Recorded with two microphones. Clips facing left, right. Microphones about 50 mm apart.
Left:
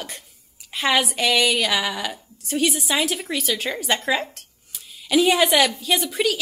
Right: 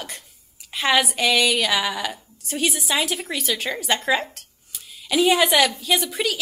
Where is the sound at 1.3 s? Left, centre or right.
Left.